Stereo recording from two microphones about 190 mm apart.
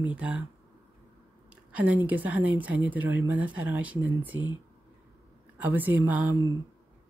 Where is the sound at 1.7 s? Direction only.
5° right (ahead or behind).